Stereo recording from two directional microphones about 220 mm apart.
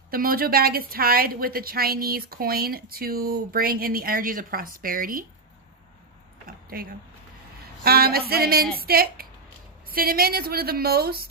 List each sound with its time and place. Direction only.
0.1 s a woman's voice: 40° right (ahead or behind)
6.4 s a sound: 40° right (ahead or behind)
7.8 s a woman's voice: 45° right (ahead or behind)